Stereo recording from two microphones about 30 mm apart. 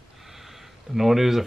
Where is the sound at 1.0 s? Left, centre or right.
Centre.